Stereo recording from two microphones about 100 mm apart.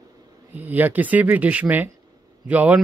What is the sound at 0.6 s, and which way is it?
A man's voice, 15° right (ahead or behind).